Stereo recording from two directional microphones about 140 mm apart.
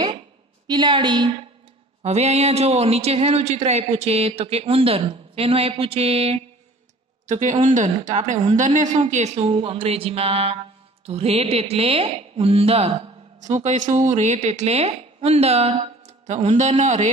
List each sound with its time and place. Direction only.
0.7 s a woman's voice: 35° right (ahead or behind)
2.0 s speech: 50° right (ahead or behind)
7.2 s speech: 60° right (ahead or behind)